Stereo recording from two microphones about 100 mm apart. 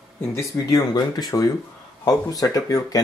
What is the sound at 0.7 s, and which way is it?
Speech, 40° left (ahead or behind).